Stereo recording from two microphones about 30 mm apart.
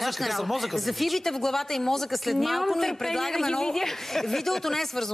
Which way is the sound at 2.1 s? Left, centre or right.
Centre.